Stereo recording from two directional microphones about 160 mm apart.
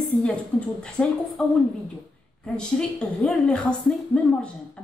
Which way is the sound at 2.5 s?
5° left (ahead or behind).